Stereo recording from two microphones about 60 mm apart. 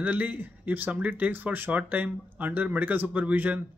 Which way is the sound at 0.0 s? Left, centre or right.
Right.